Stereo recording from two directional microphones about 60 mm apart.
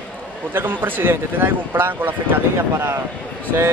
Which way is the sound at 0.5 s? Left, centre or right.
Right.